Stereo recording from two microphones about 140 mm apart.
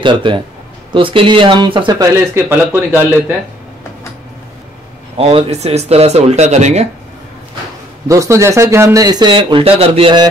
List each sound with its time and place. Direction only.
0.0 s speech: 35° right (ahead or behind)
2.1 s a man's voice: 15° right (ahead or behind)
5.1 s speech: 45° right (ahead or behind)
8.1 s speech: 20° right (ahead or behind); by 10.2 s 40° right (ahead or behind)